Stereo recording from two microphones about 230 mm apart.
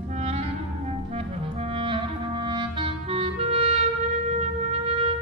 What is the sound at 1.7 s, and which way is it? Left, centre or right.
Clarinet, right.